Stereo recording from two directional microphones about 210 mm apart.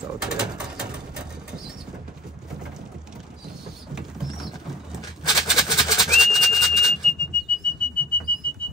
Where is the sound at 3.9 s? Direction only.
Centre (ahead or behind).